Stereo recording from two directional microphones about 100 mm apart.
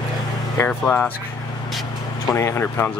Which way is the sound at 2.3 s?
30° left (ahead or behind).